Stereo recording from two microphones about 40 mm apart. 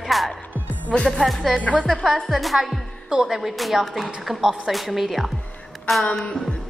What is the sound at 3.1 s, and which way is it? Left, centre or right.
Speech, centre.